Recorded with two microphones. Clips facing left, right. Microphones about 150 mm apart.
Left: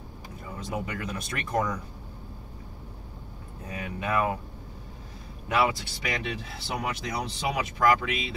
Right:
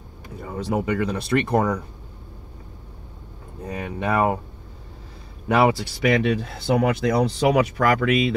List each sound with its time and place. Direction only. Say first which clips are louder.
0.5 s speech: right 10 dB; 65° right (ahead or behind)
3.6 s speech: right 6 dB; 75° right (ahead or behind)
5.5 s speech: right 7 dB; 65° right (ahead or behind)